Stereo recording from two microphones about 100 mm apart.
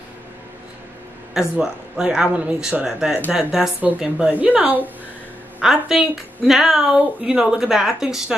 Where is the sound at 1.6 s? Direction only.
5° right (ahead or behind).